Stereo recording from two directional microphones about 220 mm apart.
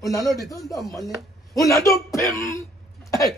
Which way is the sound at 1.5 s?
15° left (ahead or behind).